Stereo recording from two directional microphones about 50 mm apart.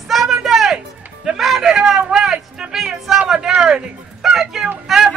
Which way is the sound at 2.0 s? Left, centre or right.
Centre.